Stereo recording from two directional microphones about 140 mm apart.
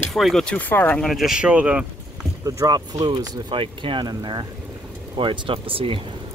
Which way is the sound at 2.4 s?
25° right (ahead or behind).